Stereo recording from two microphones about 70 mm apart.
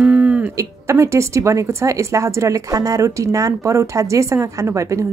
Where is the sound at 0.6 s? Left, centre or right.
Right.